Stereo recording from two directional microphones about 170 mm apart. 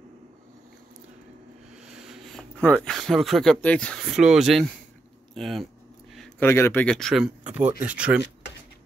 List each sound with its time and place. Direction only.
1.9 s speech: 5° right (ahead or behind)
6.4 s speech: 15° left (ahead or behind); by 8.2 s 5° right (ahead or behind)